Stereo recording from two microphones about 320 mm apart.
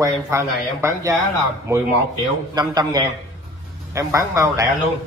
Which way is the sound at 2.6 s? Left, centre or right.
Centre.